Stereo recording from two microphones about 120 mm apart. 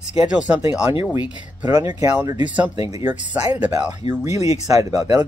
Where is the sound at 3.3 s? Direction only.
15° right (ahead or behind).